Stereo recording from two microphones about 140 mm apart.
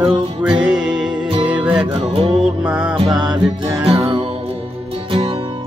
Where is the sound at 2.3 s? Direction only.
5° right (ahead or behind).